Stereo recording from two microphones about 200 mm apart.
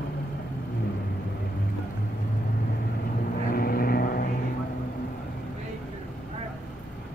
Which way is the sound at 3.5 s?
45° left (ahead or behind).